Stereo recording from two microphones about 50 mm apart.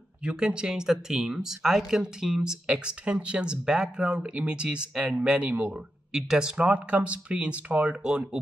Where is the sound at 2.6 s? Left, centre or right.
Right.